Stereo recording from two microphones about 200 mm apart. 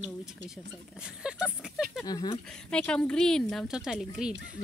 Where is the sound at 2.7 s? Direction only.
5° left (ahead or behind).